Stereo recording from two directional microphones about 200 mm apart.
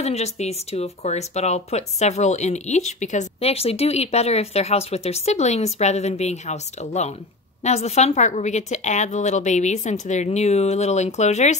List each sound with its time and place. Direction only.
0.0 s speech: 35° left (ahead or behind)